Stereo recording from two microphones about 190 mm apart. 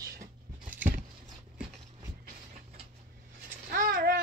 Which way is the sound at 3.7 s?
50° right (ahead or behind).